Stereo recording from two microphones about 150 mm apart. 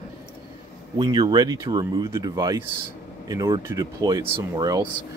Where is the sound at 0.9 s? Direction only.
30° right (ahead or behind).